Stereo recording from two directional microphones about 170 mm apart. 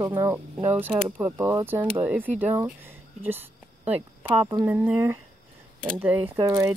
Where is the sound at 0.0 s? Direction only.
20° right (ahead or behind).